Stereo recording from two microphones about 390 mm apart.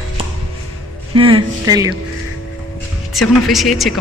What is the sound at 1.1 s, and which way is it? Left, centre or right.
Speech, centre.